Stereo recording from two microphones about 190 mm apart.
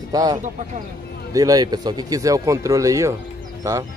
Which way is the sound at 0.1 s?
20° right (ahead or behind).